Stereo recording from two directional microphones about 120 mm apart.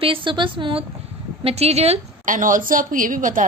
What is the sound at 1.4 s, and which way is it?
A woman's voice, 60° right (ahead or behind).